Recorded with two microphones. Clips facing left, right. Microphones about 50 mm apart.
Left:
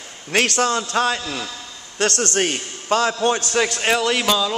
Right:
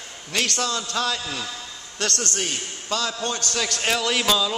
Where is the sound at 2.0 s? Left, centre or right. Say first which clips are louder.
Left 7 dB; left.